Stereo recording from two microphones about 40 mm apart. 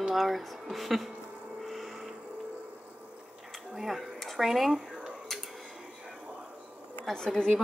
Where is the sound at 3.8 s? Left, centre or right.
Centre.